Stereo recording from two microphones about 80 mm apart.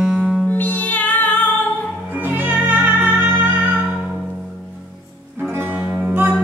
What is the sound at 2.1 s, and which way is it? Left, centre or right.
Music, right.